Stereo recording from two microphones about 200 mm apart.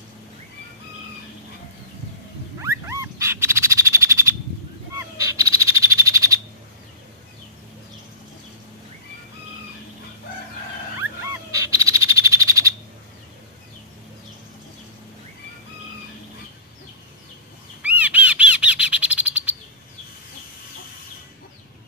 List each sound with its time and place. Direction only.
2.6 s frog: 15° right (ahead or behind)
11.6 s frog: 15° right (ahead or behind)
17.8 s bird: 5° right (ahead or behind)